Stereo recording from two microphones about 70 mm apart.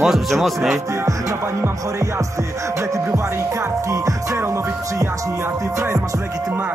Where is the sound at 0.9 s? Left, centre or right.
Right.